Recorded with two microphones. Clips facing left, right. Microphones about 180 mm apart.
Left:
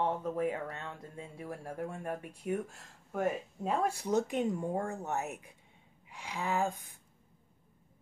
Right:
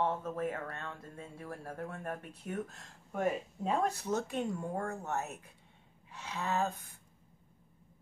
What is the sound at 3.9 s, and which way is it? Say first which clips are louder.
Speech: left 4 dB; 15° left (ahead or behind).